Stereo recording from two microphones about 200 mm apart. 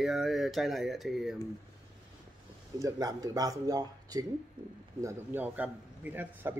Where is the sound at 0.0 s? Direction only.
Centre (ahead or behind).